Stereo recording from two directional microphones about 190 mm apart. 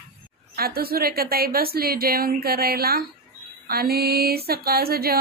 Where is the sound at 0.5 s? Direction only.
50° right (ahead or behind).